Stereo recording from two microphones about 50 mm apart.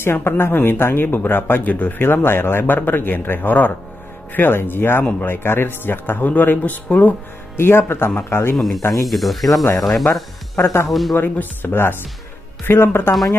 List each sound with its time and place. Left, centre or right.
0.0 s speech: left
2.0 s speech: left
4.3 s speech: left
7.5 s speech: left
8.5 s speech: centre
11.1 s speech: left